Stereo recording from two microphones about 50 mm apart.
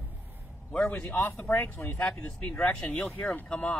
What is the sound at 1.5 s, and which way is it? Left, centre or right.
Speech, left.